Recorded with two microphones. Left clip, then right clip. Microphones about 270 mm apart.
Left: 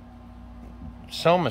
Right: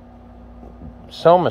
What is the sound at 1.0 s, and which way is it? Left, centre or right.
Speech, centre.